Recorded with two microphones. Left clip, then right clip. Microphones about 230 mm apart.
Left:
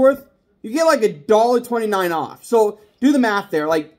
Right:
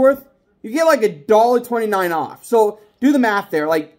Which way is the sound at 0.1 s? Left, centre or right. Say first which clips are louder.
Right 2 dB; centre.